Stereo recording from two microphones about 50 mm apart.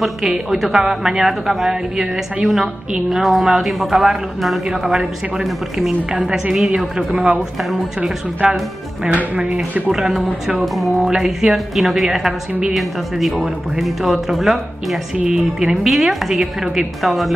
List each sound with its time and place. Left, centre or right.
0.0 s a woman's voice: centre
4.6 s a woman's voice: centre
5.4 s a woman's voice: centre
9.8 s a woman's voice: centre
12.7 s a woman's voice: centre